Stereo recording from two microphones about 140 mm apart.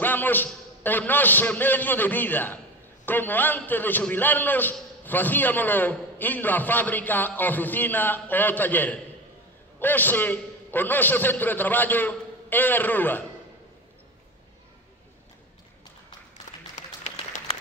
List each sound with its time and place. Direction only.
0.0 s a man's voice: 15° left (ahead or behind)
17.0 s applause: 55° left (ahead or behind)